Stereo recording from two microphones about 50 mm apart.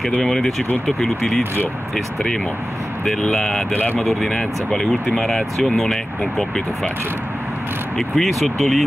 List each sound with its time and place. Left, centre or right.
0.2 s speech: centre
3.1 s speech: centre
3.7 s speech: left
4.0 s speech: centre
8.2 s speech: centre